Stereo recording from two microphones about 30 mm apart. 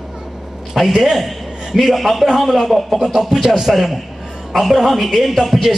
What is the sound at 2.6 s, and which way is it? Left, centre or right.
A man's voice, centre.